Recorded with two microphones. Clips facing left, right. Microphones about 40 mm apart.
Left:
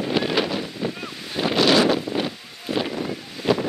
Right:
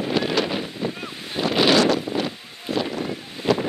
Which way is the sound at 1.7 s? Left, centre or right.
Centre.